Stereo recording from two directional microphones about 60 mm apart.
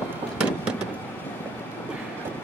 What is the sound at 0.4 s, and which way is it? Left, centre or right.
Vehicle, centre.